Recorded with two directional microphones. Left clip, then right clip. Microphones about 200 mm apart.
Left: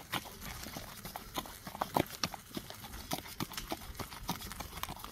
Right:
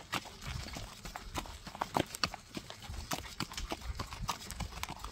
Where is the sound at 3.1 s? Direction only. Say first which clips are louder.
Right 1 dB; 20° left (ahead or behind).